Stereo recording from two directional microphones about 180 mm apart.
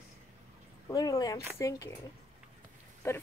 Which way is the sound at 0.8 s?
20° left (ahead or behind).